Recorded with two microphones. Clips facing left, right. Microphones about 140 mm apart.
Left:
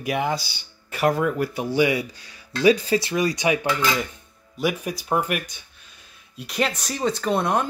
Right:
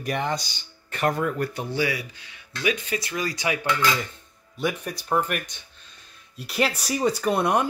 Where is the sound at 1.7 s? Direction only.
20° left (ahead or behind).